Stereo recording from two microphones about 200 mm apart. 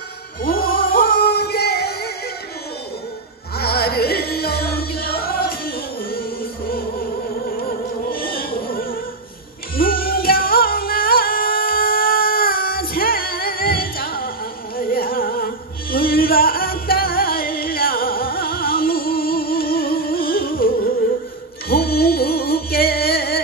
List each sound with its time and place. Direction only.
0.4 s music: 45° left (ahead or behind)
3.5 s music: 50° left (ahead or behind)
7.5 s music: 45° left (ahead or behind)